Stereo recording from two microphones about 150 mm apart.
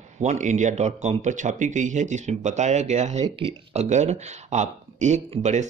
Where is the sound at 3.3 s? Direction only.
35° right (ahead or behind).